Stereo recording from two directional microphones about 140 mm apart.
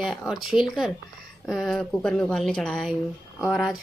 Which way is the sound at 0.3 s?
Centre (ahead or behind).